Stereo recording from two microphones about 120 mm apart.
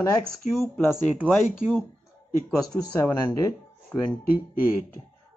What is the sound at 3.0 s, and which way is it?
Speech, 20° left (ahead or behind).